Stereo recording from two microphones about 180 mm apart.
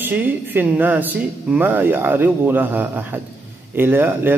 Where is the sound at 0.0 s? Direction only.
10° right (ahead or behind).